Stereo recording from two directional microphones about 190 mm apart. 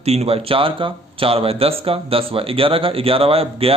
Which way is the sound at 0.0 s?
35° right (ahead or behind).